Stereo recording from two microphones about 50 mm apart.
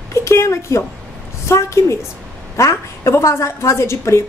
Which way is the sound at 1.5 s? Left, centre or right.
Left.